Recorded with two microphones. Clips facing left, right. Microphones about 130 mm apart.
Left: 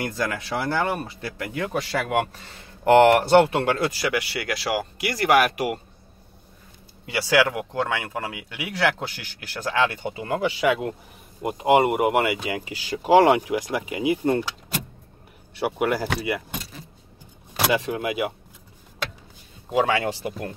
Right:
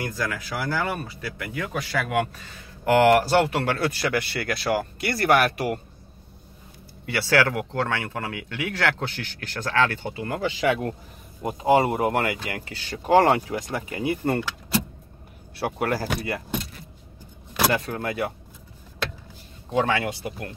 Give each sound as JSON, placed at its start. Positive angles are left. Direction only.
{"t": 0.0, "sound": "speech", "side_deg": 25}
{"t": 7.1, "sound": "speech", "side_deg": 15}
{"t": 13.1, "sound": "speech", "side_deg": 0}
{"t": 15.6, "sound": "speech", "side_deg": 10}
{"t": 17.7, "sound": "speech", "side_deg": 10}
{"t": 20.0, "sound": "speech", "side_deg": 25}